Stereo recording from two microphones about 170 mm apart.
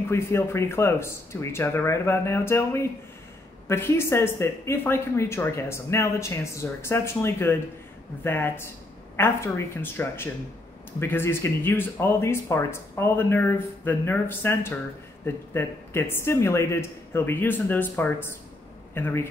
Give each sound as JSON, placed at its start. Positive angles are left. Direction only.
{"t": 0.1, "sound": "speech", "side_deg": 15}